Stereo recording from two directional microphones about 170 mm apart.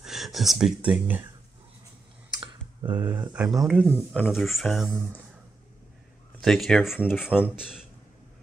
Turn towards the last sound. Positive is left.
turn(degrees=-5)  # may be behind; listen again after turning